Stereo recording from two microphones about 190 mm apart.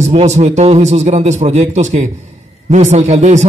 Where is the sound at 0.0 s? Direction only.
35° right (ahead or behind).